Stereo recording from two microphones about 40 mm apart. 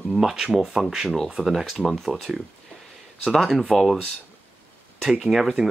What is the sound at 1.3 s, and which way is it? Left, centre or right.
Speech, centre.